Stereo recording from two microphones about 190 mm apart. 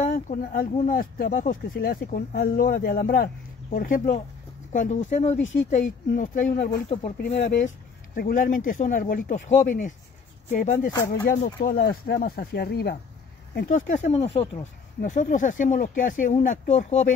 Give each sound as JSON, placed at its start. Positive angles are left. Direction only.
{"t": 0.1, "sound": "speech", "side_deg": 45}
{"t": 10.9, "sound": "speech", "side_deg": 15}
{"t": 11.2, "sound": "speech", "side_deg": 45}
{"t": 13.6, "sound": "speech", "side_deg": 45}
{"t": 15.0, "sound": "speech", "side_deg": 45}